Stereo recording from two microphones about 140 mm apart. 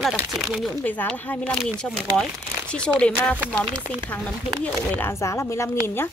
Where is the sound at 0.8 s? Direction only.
10° left (ahead or behind).